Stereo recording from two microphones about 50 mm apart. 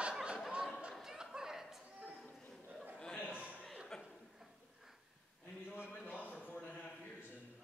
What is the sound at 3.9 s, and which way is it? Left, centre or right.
Chuckle, centre.